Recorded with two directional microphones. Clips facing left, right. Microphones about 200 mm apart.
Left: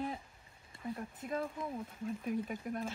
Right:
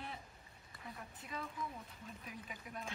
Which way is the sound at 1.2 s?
50° left (ahead or behind).